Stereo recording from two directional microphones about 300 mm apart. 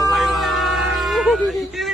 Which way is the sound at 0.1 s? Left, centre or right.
Centre.